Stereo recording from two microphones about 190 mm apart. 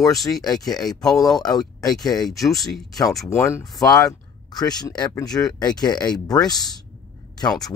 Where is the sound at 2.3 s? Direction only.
Centre (ahead or behind).